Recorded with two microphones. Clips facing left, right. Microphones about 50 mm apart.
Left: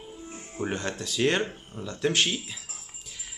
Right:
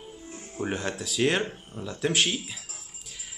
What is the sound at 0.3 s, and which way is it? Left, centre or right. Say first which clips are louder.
Music: even; left.